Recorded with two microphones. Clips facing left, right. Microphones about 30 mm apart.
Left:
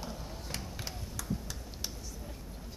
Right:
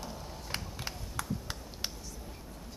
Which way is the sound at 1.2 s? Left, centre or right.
Right.